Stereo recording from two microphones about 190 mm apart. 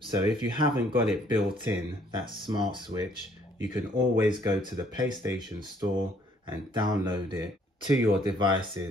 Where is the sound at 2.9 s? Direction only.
25° right (ahead or behind).